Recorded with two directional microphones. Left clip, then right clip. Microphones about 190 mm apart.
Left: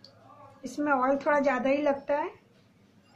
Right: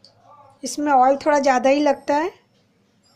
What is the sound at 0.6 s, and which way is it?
A woman's voice, 40° right (ahead or behind).